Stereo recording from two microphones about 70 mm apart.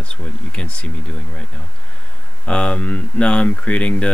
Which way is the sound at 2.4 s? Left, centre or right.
Centre.